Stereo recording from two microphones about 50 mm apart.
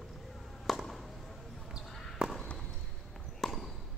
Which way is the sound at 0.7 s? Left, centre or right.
Centre.